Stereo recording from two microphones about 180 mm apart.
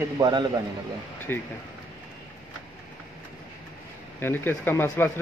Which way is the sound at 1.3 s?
10° left (ahead or behind).